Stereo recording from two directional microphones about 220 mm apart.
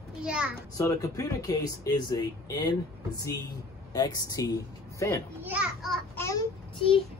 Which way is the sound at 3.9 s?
15° left (ahead or behind).